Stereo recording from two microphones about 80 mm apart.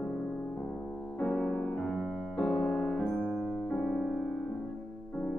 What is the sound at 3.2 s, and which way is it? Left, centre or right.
Music, centre.